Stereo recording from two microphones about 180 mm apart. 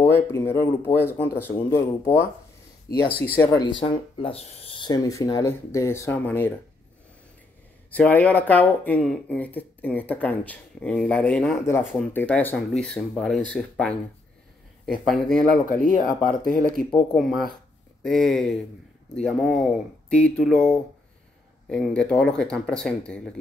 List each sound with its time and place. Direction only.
0.0 s speech: 15° left (ahead or behind)
3.8 s speech: 30° left (ahead or behind); by 6.5 s 10° left (ahead or behind)
7.9 s speech: 10° left (ahead or behind)
15.0 s speech: 5° left (ahead or behind)
15.6 s speech: 50° left (ahead or behind)
17.1 s speech: centre (ahead or behind)